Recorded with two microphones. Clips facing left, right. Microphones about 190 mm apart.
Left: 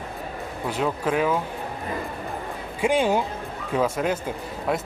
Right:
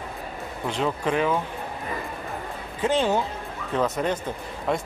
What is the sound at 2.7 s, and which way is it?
A man's voice, 10° left (ahead or behind).